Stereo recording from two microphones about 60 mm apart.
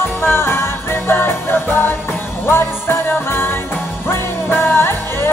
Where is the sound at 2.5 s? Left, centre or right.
Left.